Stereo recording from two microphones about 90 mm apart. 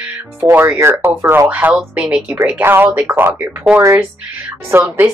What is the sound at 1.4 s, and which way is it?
Speech, 15° right (ahead or behind).